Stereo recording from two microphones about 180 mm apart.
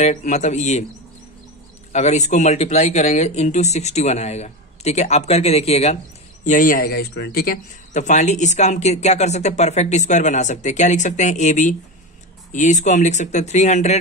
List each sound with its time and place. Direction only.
0.0 s speech: 40° left (ahead or behind)
1.9 s speech: 40° left (ahead or behind)
6.4 s speech: 45° left (ahead or behind); by 7.5 s 60° left (ahead or behind)
7.9 s speech: 40° left (ahead or behind)